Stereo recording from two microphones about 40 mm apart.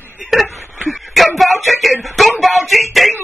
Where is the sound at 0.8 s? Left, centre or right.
Centre.